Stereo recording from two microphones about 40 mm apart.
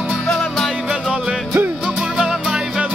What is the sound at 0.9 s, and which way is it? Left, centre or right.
Music, centre.